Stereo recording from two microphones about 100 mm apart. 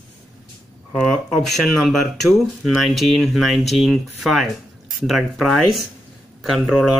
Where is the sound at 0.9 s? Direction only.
5° left (ahead or behind).